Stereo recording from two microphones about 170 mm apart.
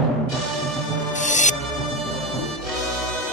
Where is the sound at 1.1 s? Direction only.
45° left (ahead or behind).